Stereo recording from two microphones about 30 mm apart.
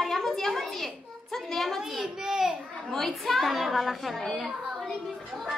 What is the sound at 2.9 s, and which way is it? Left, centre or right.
A child's voice, centre.